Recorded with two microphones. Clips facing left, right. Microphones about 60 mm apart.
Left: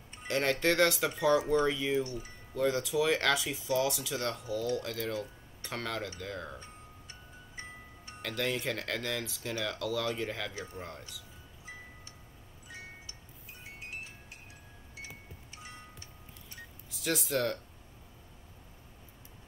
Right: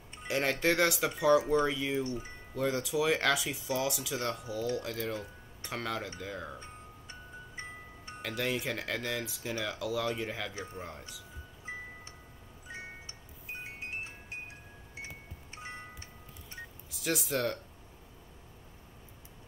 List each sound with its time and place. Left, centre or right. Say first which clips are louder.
0.3 s speech: even; centre
2.0 s speech: right 3 dB; right
2.5 s speech: left 2 dB; centre
8.2 s speech: even; centre
10.5 s speech: right 1 dB; right
10.8 s speech: even; centre
11.7 s music: right 6 dB; right
12.6 s wind chime: right 3 dB; right
15.5 s music: right 5 dB; right
16.9 s speech: left 1 dB; centre